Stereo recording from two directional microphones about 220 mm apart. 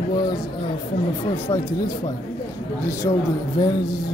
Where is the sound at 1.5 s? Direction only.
15° left (ahead or behind).